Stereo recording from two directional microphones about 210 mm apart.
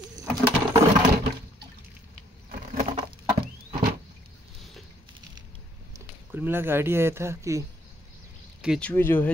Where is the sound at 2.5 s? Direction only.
30° right (ahead or behind).